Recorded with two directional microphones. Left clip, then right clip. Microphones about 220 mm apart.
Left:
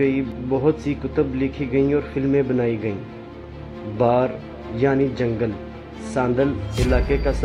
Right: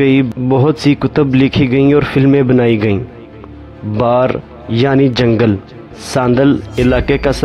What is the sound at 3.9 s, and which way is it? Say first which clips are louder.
A man's voice: right 7 dB; 45° right (ahead or behind).